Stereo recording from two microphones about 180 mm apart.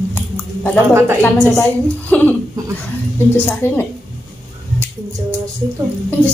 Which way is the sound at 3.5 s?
10° left (ahead or behind).